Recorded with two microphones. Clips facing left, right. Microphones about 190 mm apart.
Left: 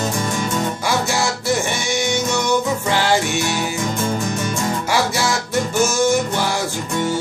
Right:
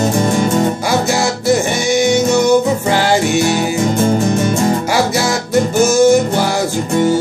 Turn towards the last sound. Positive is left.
turn(degrees=-40)  # may be behind; listen again after turning